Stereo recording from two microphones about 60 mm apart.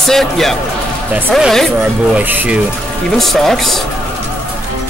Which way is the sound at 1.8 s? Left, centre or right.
Right.